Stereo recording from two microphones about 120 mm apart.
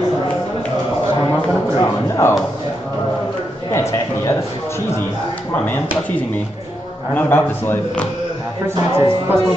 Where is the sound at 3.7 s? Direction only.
25° left (ahead or behind).